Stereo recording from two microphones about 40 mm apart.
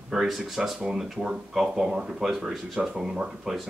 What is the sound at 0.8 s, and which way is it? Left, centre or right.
Speech, centre.